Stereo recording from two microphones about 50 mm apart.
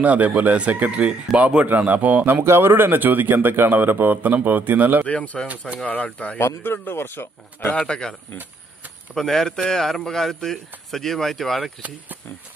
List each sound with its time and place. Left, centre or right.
0.0 s speech: right
1.8 s speech: right
2.4 s speech: right
5.0 s speech: left
6.3 s speech: left
7.7 s speech: centre